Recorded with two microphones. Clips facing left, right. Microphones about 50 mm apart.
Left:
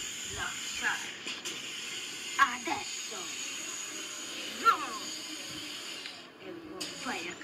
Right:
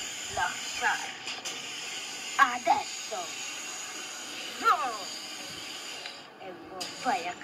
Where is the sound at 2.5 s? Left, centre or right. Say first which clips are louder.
Right 9 dB; right.